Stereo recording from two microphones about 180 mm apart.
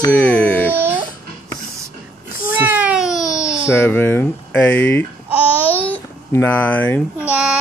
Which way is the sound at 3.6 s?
10° left (ahead or behind).